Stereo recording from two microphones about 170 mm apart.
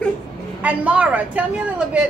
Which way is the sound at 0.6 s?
10° right (ahead or behind).